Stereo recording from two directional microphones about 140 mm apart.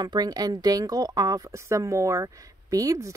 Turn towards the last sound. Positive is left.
turn(degrees=-25)  # may be behind; listen again after turning